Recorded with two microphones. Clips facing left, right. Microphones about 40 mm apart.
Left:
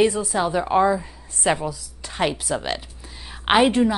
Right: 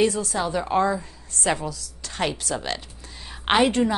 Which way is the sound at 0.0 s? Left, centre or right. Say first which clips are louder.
Left 3 dB; centre.